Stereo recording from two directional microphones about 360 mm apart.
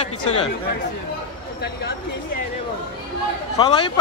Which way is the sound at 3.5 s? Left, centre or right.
Centre.